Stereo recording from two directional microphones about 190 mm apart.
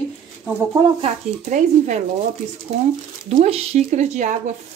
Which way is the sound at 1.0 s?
40° right (ahead or behind).